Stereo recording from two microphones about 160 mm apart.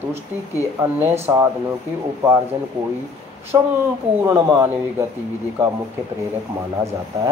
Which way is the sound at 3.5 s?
20° right (ahead or behind).